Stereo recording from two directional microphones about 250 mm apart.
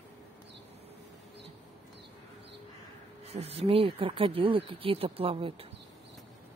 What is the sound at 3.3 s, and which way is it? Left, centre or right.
Speech, right.